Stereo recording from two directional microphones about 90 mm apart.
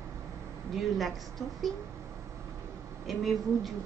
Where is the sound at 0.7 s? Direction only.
Centre (ahead or behind).